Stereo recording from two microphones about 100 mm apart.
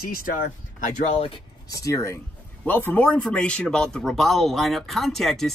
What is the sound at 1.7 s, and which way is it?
Speech, 30° left (ahead or behind).